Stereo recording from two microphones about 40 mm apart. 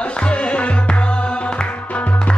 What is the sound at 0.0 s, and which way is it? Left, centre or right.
Music, left.